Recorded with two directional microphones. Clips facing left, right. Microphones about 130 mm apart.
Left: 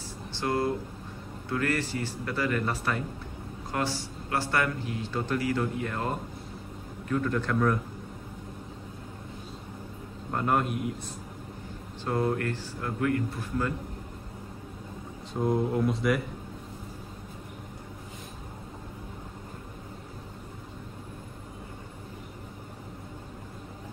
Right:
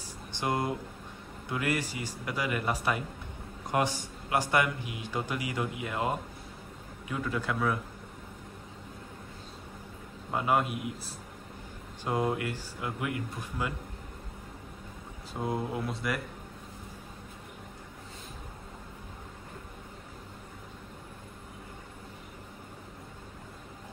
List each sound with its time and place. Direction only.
0.3 s a man's voice: 15° right (ahead or behind)
10.3 s speech: 5° right (ahead or behind)
12.0 s a man's voice: 15° right (ahead or behind)
15.4 s speech: centre (ahead or behind)